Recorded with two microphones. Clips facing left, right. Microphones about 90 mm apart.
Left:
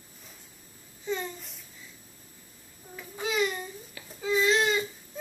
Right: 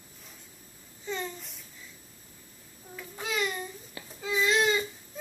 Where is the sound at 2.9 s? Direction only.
5° left (ahead or behind).